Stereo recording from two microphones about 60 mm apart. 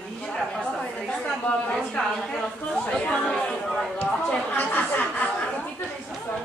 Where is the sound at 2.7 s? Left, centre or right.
Centre.